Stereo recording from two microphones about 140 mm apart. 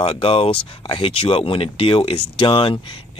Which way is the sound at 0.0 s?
40° left (ahead or behind).